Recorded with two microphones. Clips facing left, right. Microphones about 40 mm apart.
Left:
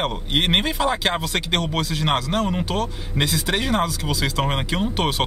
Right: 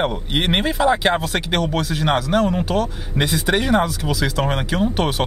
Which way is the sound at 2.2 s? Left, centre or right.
Right.